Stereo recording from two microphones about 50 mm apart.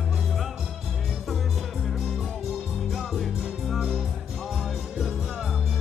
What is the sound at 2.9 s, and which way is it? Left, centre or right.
Music, centre.